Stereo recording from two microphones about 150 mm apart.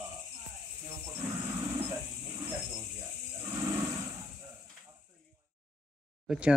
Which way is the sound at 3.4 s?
20° right (ahead or behind).